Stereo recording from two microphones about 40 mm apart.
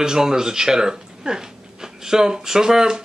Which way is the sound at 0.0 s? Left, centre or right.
Centre.